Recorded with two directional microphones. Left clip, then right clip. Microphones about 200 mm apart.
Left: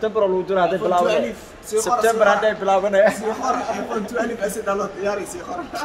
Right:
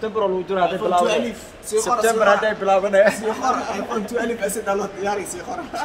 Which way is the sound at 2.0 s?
15° left (ahead or behind).